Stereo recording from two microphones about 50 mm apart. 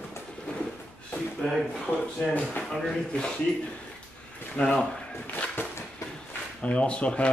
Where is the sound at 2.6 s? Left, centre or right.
Centre.